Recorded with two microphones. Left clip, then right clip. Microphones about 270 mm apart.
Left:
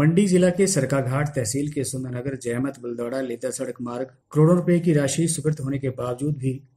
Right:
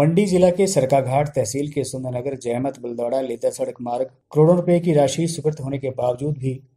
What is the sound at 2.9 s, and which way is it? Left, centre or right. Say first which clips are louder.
Speech: right 7 dB; centre.